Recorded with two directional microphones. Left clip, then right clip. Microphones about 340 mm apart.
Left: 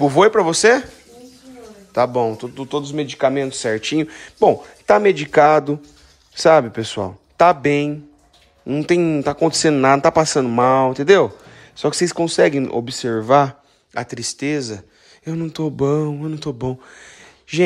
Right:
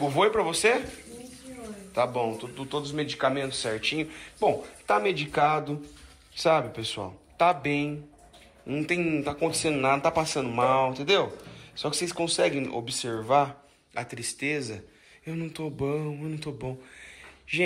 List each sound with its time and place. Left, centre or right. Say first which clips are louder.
0.0 s a man's voice: left 10 dB; left
1.9 s a man's voice: left 9 dB; left